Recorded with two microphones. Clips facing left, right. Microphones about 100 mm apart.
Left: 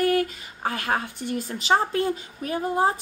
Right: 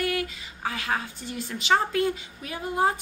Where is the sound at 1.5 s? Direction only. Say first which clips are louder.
Left 1 dB; 35° left (ahead or behind).